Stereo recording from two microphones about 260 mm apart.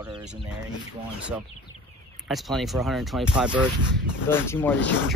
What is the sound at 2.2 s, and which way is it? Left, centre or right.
Speech, centre.